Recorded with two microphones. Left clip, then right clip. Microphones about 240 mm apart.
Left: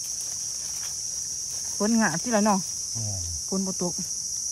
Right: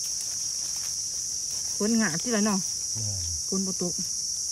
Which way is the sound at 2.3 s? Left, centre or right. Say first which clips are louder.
Left 6 dB; centre.